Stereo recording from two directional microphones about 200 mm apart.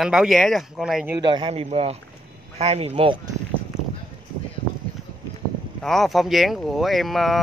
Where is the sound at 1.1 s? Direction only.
25° right (ahead or behind).